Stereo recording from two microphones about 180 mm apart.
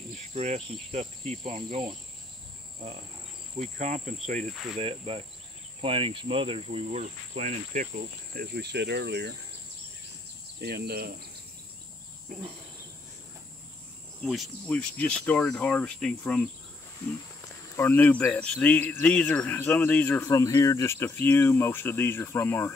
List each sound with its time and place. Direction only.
0.3 s insect: 40° right (ahead or behind)
3.5 s insect: 40° right (ahead or behind)
4.7 s insect: 30° right (ahead or behind)
8.4 s speech: 65° right (ahead or behind)
10.6 s speech: 60° right (ahead or behind)
14.2 s speech: centre (ahead or behind)
17.7 s speech: 10° left (ahead or behind)